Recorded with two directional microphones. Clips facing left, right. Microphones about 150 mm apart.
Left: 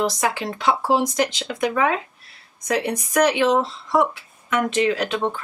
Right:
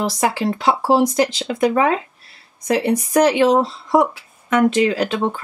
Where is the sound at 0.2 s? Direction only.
35° right (ahead or behind).